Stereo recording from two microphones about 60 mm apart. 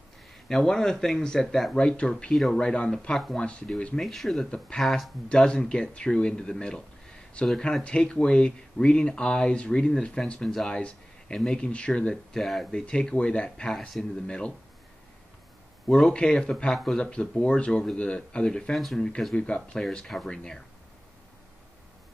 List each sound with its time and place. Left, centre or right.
0.5 s speech: centre
4.0 s speech: centre
5.5 s speech: centre
7.8 s speech: centre
10.4 s speech: centre
10.7 s speech: centre
12.4 s speech: centre
12.8 s speech: centre
13.7 s speech: centre
14.2 s speech: centre
15.9 s speech: centre
16.7 s speech: centre
17.0 s speech: centre